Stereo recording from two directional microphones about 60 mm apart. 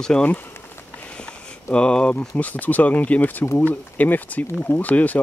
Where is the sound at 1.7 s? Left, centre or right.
Centre.